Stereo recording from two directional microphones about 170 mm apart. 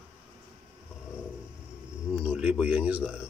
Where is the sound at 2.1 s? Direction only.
5° right (ahead or behind).